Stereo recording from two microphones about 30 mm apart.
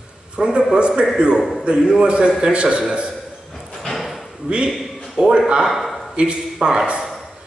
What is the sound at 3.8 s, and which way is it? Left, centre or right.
Drawer open or close, centre.